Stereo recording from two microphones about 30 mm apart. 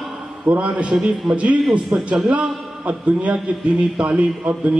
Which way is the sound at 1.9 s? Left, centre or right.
Right.